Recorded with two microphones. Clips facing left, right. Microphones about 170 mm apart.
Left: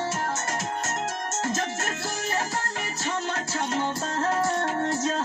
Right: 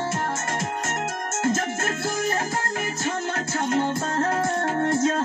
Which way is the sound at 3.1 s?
50° right (ahead or behind).